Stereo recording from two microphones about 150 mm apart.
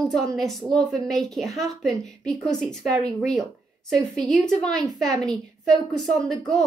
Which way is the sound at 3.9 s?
Centre (ahead or behind).